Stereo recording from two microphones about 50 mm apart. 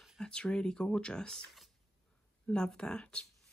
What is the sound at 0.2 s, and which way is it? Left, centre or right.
Speech, centre.